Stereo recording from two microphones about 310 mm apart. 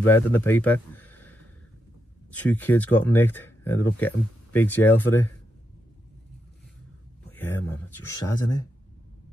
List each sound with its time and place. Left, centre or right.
0.0 s speech: centre
7.3 s speech: centre